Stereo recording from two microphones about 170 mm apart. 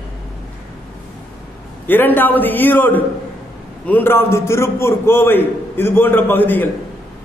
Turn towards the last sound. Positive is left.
turn(degrees=10)  # may be behind; listen again after turning